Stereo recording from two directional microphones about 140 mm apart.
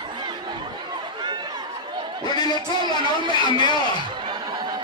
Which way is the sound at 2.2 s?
30° left (ahead or behind).